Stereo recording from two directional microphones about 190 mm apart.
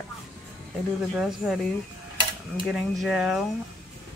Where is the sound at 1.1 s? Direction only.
5° right (ahead or behind).